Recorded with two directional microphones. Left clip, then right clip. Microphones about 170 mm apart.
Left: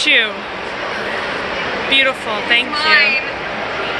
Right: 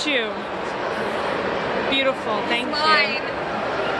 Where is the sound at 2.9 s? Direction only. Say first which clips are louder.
Left 7 dB; 90° right.